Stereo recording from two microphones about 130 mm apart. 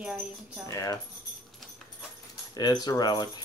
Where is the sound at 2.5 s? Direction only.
30° left (ahead or behind).